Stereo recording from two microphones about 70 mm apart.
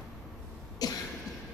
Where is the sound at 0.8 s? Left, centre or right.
Left.